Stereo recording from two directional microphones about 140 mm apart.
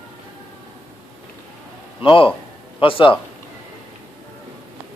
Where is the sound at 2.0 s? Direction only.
40° left (ahead or behind).